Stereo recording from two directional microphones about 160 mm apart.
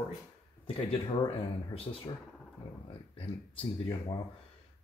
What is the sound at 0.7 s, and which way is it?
Speech, 35° left (ahead or behind).